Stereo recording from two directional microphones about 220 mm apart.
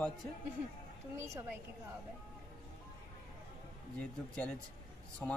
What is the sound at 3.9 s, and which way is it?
Speech, 5° left (ahead or behind).